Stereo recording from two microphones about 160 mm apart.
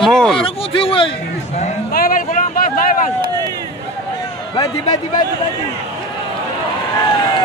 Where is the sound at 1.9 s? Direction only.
65° left (ahead or behind).